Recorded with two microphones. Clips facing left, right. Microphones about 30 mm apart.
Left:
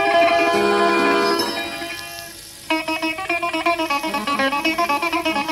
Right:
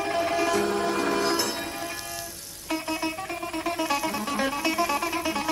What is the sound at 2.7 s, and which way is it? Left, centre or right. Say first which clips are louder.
Music: left 7 dB; left.